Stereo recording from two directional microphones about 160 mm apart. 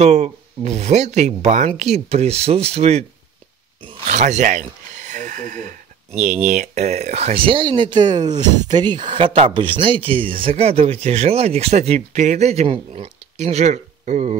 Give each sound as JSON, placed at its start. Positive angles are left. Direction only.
{"t": 0.0, "sound": "speech", "side_deg": -45}
{"t": 4.1, "sound": "speech", "side_deg": -50}